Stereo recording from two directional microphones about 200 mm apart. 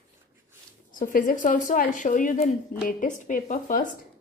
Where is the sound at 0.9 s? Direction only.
45° left (ahead or behind).